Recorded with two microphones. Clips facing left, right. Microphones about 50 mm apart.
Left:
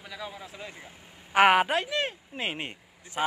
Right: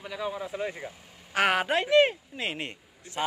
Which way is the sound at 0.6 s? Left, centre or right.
Right.